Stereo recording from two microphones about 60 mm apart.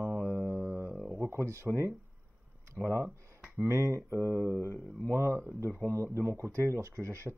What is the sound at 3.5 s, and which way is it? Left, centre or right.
Speech, right.